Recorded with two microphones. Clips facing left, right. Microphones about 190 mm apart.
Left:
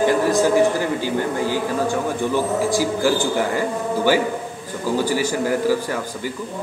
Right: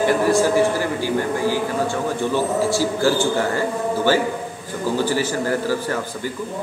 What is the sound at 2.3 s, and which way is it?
A man's voice, 15° left (ahead or behind).